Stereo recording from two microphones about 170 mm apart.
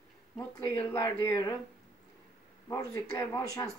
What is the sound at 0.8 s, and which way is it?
Speech, 15° left (ahead or behind).